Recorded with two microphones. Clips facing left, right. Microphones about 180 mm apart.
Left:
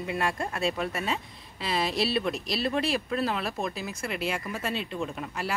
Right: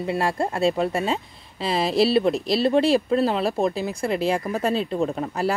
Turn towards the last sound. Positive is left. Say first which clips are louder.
# right 9 dB
turn(degrees=-40)  # may be behind; listen again after turning